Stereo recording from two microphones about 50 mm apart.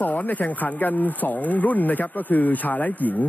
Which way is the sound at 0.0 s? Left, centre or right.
Left.